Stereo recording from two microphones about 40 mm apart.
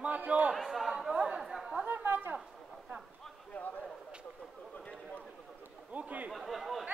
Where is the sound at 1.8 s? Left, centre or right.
Right.